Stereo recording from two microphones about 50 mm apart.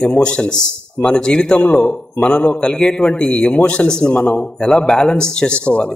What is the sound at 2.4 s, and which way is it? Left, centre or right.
A man's voice, centre.